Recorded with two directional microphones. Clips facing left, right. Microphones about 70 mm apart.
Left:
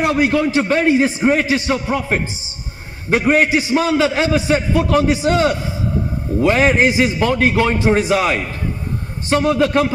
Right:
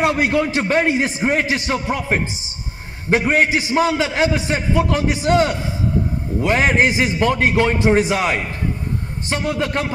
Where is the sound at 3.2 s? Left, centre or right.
Centre.